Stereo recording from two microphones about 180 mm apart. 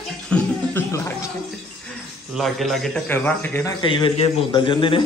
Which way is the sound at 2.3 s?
Centre (ahead or behind).